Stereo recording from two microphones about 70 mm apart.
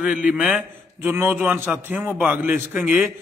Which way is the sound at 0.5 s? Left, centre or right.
Right.